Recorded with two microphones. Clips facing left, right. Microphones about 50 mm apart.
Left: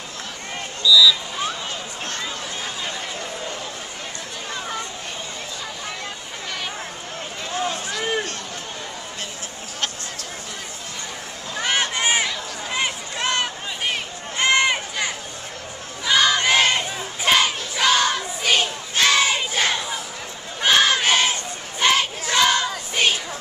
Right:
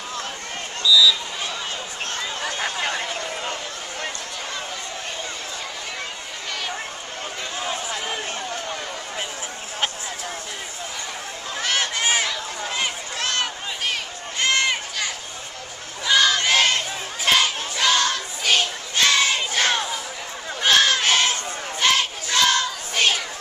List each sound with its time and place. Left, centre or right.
0.9 s speech: centre
2.4 s a sound: right
11.6 s a sound: centre
14.4 s run: centre
16.1 s battle cry: centre
20.6 s crowd: centre